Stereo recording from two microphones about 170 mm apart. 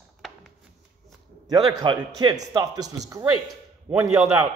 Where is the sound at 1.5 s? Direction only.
25° right (ahead or behind).